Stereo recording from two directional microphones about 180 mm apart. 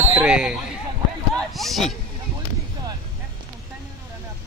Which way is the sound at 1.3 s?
Centre (ahead or behind).